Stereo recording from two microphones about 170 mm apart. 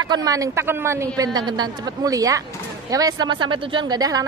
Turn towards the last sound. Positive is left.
turn(degrees=-20)  # may be behind; listen again after turning